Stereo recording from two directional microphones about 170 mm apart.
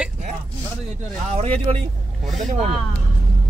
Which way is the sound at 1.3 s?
40° right (ahead or behind).